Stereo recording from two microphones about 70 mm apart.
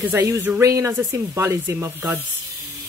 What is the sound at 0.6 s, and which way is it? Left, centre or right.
Speech, right.